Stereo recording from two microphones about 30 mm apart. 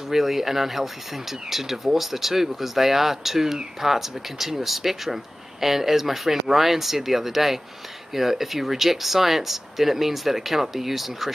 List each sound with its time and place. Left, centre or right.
0.1 s speech: centre